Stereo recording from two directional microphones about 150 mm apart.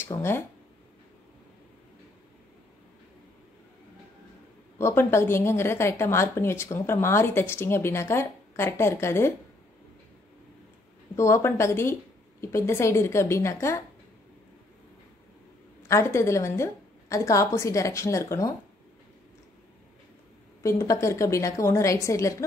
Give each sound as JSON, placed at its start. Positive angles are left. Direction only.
{"t": 0.0, "sound": "speech", "side_deg": 15}
{"t": 4.7, "sound": "a woman's voice", "side_deg": 15}
{"t": 11.1, "sound": "a woman's voice", "side_deg": 20}
{"t": 15.9, "sound": "a woman's voice", "side_deg": 20}
{"t": 20.6, "sound": "a woman's voice", "side_deg": 20}